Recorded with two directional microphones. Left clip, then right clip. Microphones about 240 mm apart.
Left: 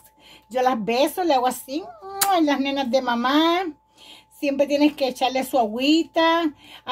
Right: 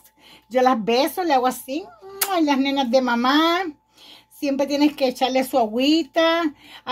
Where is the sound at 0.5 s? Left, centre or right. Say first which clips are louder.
Right 2 dB; right.